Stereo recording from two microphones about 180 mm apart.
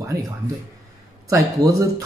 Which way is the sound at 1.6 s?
20° right (ahead or behind).